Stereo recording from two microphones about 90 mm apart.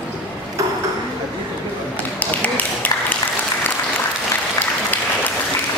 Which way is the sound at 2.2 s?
20° left (ahead or behind).